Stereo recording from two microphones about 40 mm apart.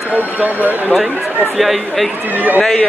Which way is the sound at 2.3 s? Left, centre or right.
Right.